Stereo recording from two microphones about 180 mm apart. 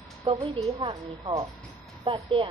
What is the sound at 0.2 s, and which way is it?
A woman's voice, 30° right (ahead or behind).